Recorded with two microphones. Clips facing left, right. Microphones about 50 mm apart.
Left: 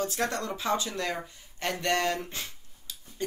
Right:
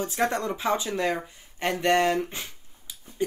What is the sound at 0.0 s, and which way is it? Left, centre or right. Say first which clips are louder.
Speech: right 4 dB; right.